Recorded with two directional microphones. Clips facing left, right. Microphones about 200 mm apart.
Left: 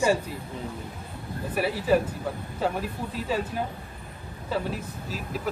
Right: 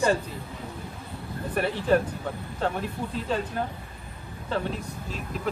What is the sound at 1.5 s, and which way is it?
A man's voice, 5° left (ahead or behind).